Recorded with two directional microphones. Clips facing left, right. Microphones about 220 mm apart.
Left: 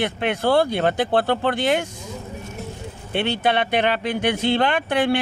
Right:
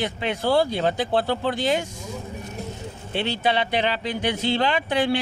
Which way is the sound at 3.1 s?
55° left (ahead or behind).